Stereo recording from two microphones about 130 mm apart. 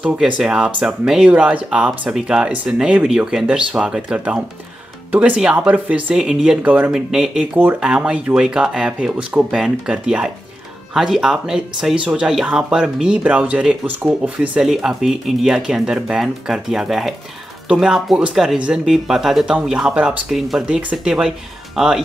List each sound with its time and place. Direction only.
0.0 s speech: 5° right (ahead or behind)